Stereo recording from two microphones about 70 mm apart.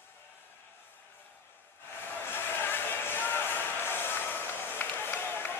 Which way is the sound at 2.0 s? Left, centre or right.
Left.